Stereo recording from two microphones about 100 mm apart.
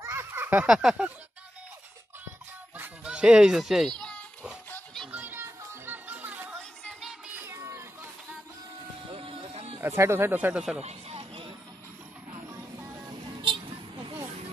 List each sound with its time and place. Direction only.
0.0 s a sound: 25° right (ahead or behind); by 1.1 s 10° right (ahead or behind)
2.8 s music: 10° right (ahead or behind)
4.0 s children playing: 10° left (ahead or behind)
5.1 s music: 20° right (ahead or behind)
7.3 s a sound: 25° right (ahead or behind)
9.1 s music: 65° right (ahead or behind); by 9.8 s 85° right
9.8 s speech: 25° right (ahead or behind)
10.8 s a sound: 90° right; by 11.5 s 70° right (ahead or behind)
13.4 s vehicle: 55° right (ahead or behind)